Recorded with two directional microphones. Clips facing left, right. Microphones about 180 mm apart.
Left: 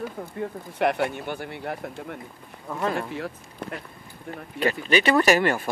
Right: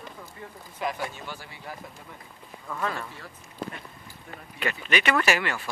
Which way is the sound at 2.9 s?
65° left (ahead or behind).